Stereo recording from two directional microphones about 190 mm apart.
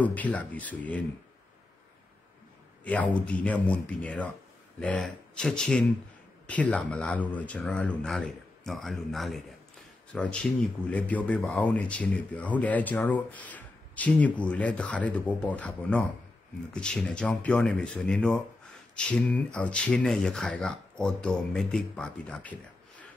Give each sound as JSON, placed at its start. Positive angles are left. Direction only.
{"t": 0.0, "sound": "a man's voice", "side_deg": 10}
{"t": 2.8, "sound": "a man's voice", "side_deg": 5}